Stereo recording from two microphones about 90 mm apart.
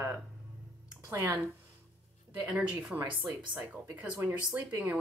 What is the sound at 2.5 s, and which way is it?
Speech, 10° right (ahead or behind).